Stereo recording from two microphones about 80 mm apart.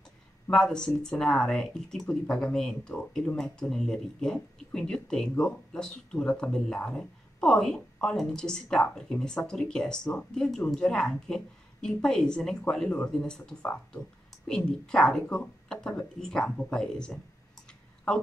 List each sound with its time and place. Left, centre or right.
0.5 s speech: centre
17.6 s clicking: centre